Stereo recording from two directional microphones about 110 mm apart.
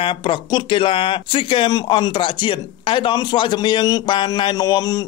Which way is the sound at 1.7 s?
40° left (ahead or behind).